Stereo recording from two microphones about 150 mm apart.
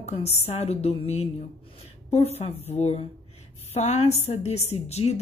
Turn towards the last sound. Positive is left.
turn(degrees=45)  # may be behind; listen again after turning